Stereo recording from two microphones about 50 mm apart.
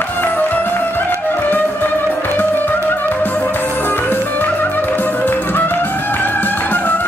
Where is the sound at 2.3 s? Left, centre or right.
Left.